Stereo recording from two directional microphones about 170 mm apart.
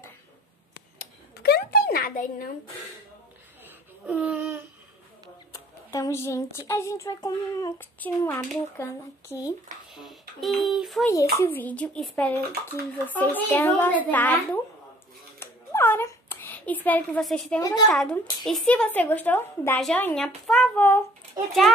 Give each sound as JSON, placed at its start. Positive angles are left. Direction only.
{"t": 1.3, "sound": "a sound", "side_deg": 70}
{"t": 3.6, "sound": "a sound", "side_deg": -10}
{"t": 5.5, "sound": "speech", "side_deg": 20}
{"t": 8.0, "sound": "a child's voice", "side_deg": 10}
{"t": 9.9, "sound": "speech", "side_deg": 0}
{"t": 11.1, "sound": "a child's voice", "side_deg": 15}
{"t": 15.3, "sound": "a sound", "side_deg": 15}
{"t": 17.6, "sound": "a woman's voice", "side_deg": 20}
{"t": 17.8, "sound": "a child's voice", "side_deg": 5}